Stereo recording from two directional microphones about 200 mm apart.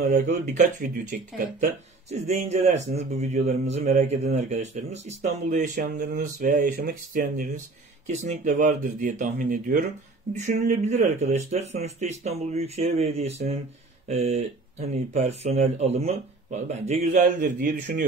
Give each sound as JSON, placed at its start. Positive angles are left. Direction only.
{"t": 0.1, "sound": "speech", "side_deg": -35}
{"t": 1.6, "sound": "speech", "side_deg": -35}